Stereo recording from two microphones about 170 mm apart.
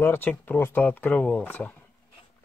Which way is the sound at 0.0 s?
10° left (ahead or behind).